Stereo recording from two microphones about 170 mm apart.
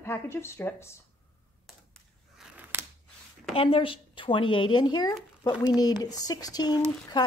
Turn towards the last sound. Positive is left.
turn(degrees=25)  # may be behind; listen again after turning